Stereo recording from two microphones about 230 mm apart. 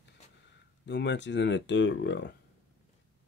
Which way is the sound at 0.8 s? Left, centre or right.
Left.